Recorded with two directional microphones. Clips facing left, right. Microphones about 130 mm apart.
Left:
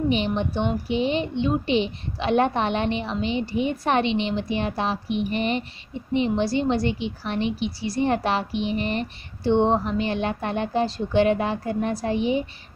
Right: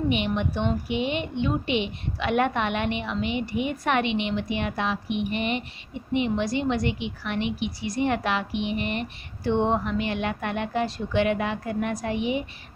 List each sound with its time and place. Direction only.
0.1 s a woman's voice: 30° left (ahead or behind)